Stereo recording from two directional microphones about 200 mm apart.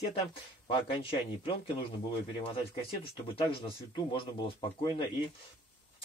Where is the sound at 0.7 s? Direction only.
25° left (ahead or behind).